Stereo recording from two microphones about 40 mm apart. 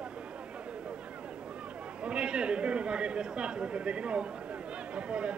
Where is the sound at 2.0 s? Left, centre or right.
Right.